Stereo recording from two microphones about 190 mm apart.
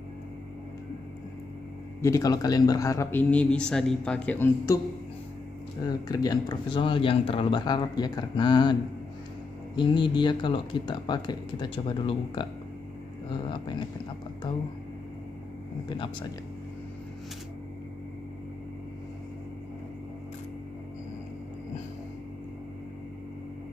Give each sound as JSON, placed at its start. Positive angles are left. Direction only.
{"t": 2.0, "sound": "a man's voice", "side_deg": 15}
{"t": 5.9, "sound": "speech", "side_deg": 20}
{"t": 9.8, "sound": "speech", "side_deg": 25}